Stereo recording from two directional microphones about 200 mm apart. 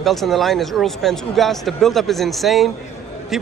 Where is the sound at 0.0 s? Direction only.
Centre (ahead or behind).